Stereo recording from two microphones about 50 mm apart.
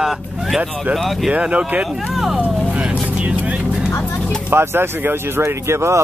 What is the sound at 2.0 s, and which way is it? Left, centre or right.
Speech, centre.